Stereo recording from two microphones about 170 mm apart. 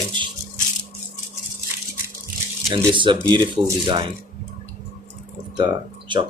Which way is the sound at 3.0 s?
25° right (ahead or behind).